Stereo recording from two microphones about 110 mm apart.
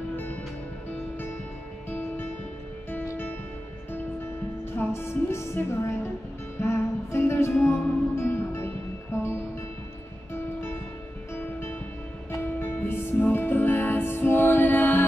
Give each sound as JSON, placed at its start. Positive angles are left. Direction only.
{"t": 0.1, "sound": "music", "side_deg": 20}
{"t": 1.9, "sound": "music", "side_deg": 20}
{"t": 4.7, "sound": "music", "side_deg": 25}
{"t": 12.3, "sound": "music", "side_deg": 20}